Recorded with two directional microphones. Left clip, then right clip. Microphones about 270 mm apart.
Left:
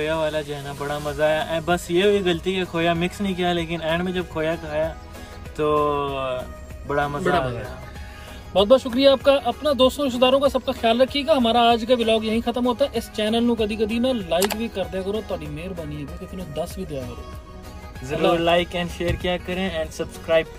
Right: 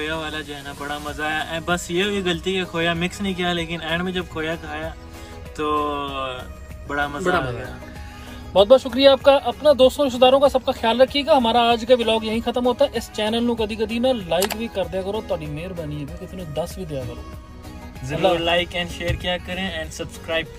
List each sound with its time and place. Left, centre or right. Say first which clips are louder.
0.0 s a sound: left 4 dB; centre
8.5 s speech: right 3 dB; centre
18.1 s speech: right 1 dB; centre
18.4 s speech: left 1 dB; left